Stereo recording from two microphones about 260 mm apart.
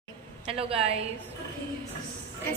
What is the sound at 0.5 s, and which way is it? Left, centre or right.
Speech, right.